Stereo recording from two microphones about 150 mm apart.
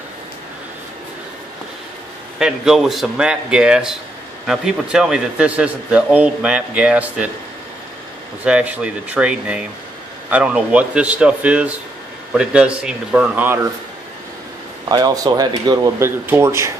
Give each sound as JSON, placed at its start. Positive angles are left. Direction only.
{"t": 2.3, "sound": "a man's voice", "side_deg": -5}
{"t": 8.5, "sound": "a man's voice", "side_deg": -10}
{"t": 14.9, "sound": "speech", "side_deg": -25}